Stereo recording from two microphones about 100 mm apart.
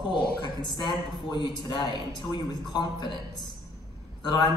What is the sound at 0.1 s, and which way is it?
A man's voice, 50° left (ahead or behind).